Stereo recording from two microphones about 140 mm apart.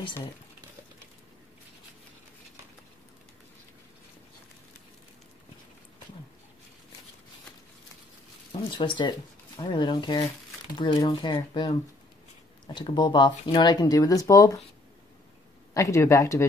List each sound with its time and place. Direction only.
8.5 s speech: 35° left (ahead or behind)
12.7 s speech: 35° left (ahead or behind)
15.7 s speech: 20° left (ahead or behind)